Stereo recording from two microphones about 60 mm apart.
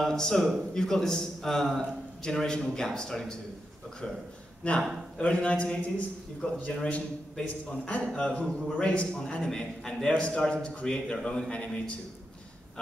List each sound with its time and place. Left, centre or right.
0.0 s a man's voice: centre
4.6 s a man's voice: left